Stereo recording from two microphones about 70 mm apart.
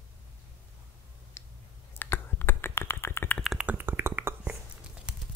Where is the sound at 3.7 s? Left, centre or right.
Right.